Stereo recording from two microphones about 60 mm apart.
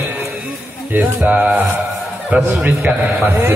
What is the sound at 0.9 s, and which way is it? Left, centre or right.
Speech, right.